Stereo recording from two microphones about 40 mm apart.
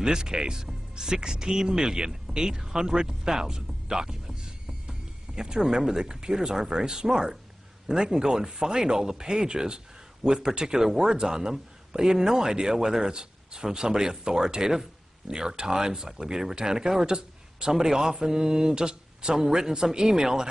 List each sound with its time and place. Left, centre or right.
0.0 s speech: centre